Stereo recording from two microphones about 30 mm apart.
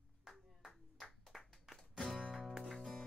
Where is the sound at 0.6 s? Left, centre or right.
Centre.